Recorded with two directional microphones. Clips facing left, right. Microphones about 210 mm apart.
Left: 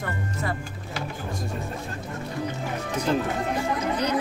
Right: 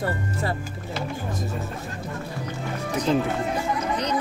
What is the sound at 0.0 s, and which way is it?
Speech, 30° right (ahead or behind).